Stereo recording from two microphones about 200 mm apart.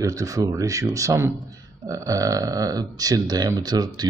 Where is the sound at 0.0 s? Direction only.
15° right (ahead or behind).